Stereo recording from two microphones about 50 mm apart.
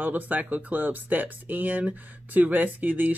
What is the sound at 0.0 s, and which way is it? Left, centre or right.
Speech, right.